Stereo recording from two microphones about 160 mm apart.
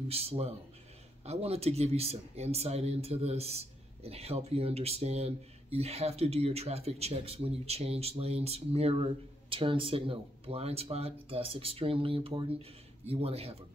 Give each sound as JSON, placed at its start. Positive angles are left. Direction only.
{"t": 0.1, "sound": "speech", "side_deg": -40}